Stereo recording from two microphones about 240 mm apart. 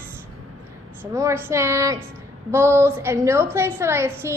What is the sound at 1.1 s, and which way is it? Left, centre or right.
A child's voice, centre.